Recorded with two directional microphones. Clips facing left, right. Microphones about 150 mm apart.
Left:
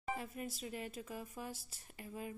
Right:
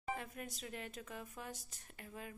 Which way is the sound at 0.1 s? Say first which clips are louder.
Left 2 dB; 5° left (ahead or behind).